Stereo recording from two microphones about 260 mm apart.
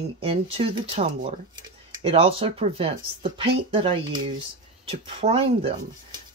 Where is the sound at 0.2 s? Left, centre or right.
Right.